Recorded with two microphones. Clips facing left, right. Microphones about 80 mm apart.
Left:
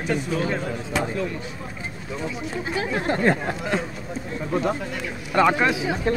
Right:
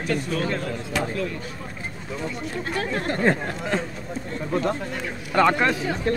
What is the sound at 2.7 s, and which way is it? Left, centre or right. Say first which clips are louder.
Speech: left 2 dB; centre.